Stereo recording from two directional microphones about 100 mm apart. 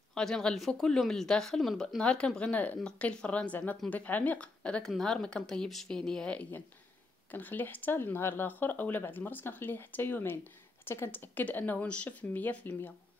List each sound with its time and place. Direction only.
0.1 s speech: 5° left (ahead or behind)
7.2 s speech: 20° left (ahead or behind)